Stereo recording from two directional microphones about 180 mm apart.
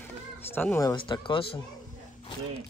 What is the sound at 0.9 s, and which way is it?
Speech, 25° left (ahead or behind).